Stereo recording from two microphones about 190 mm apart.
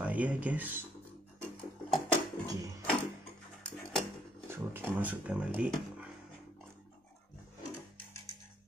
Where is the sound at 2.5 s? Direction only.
20° right (ahead or behind).